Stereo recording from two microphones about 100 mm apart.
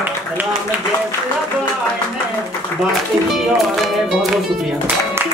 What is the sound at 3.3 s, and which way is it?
Speech, centre (ahead or behind).